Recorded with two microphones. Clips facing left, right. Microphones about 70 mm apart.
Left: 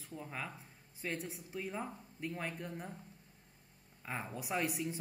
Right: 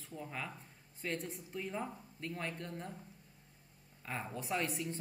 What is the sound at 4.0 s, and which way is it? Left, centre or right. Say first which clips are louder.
Speech: even; centre.